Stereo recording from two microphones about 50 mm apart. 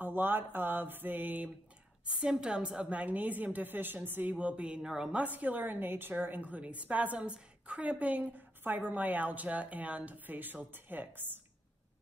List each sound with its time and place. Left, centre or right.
0.0 s mantra: right
2.0 s a woman's voice: centre; by 4.4 s right
4.4 s a woman's voice: right
5.1 s a woman's voice: right